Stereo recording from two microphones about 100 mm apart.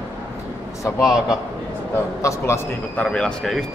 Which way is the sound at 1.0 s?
Centre (ahead or behind).